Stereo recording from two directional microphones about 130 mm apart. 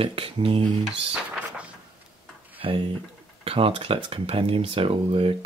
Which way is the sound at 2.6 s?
45° right (ahead or behind).